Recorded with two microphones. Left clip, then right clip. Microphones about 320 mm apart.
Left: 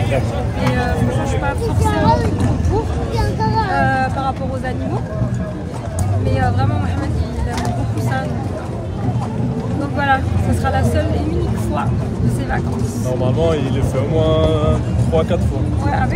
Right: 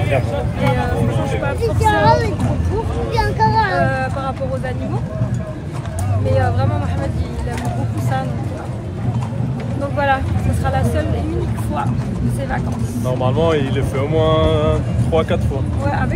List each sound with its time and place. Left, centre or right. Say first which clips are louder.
1.8 s vehicle: right 3 dB; right
3.8 s vehicle: left 2 dB; centre
6.3 s speech: right 1 dB; centre
9.9 s speech: left 1 dB; centre
13.2 s speech: right 1 dB; right